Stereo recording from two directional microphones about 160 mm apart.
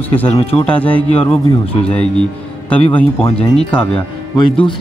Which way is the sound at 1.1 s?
40° left (ahead or behind).